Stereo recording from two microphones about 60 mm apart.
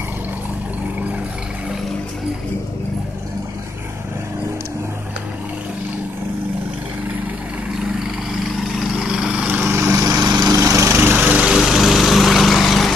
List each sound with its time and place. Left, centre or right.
7.8 s vehicle: centre; by 9.7 s right
9.7 s vehicle: right
9.9 s lawn mower: right
10.9 s lawn mower: right
11.5 s lawn mower: centre